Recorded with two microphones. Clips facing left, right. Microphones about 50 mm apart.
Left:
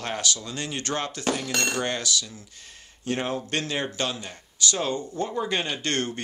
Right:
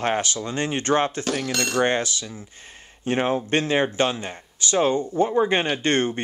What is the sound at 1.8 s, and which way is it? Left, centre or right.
Speech, right.